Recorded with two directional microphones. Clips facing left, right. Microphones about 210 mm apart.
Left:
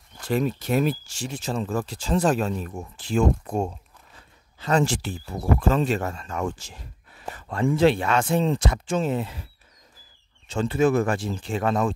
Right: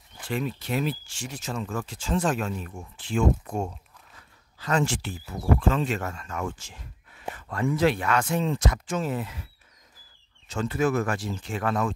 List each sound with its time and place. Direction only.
0.3 s speech: 40° left (ahead or behind)
10.5 s speech: 25° left (ahead or behind)